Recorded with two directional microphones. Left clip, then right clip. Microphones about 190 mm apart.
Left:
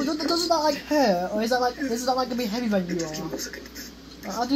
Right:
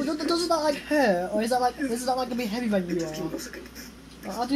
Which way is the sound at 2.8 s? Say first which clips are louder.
Even; 30° left (ahead or behind).